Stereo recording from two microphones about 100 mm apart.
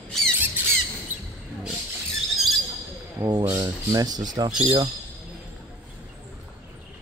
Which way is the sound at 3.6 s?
40° right (ahead or behind).